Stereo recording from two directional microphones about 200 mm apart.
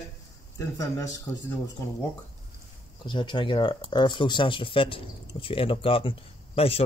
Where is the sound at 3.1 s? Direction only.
25° left (ahead or behind).